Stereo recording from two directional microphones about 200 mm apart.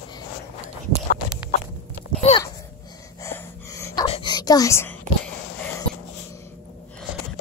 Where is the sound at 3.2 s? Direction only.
15° left (ahead or behind).